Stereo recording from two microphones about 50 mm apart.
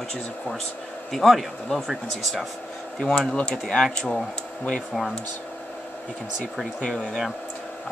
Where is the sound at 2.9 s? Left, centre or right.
Centre.